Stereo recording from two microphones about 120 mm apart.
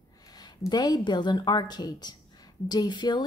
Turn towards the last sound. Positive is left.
turn(degrees=40)  # may be behind; listen again after turning